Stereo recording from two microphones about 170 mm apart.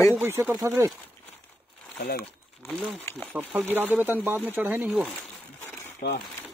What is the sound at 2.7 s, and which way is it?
Speech, centre (ahead or behind).